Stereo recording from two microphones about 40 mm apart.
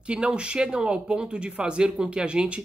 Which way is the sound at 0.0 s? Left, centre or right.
Right.